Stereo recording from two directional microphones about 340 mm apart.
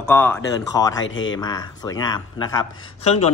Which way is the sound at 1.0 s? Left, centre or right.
Left.